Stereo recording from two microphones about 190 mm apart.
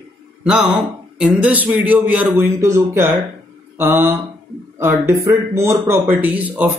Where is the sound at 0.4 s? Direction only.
5° right (ahead or behind).